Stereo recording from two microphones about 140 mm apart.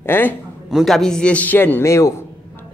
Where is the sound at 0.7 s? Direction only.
Centre (ahead or behind).